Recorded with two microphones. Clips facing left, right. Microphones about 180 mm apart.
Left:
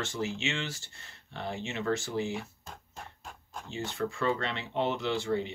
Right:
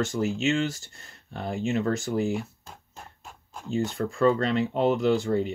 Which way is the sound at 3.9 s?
40° right (ahead or behind).